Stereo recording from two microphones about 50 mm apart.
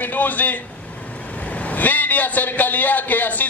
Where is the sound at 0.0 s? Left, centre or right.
Left.